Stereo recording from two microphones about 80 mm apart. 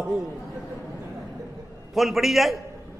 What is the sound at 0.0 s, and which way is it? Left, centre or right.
Speech, centre.